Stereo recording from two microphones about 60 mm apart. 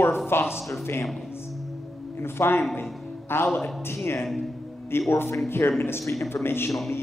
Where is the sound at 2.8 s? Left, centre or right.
Left.